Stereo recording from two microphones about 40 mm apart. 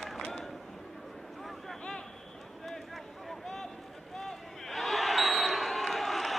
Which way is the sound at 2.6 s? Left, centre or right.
Centre.